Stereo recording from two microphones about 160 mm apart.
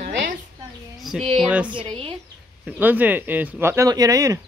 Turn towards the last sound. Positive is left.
turn(degrees=-20)  # may be behind; listen again after turning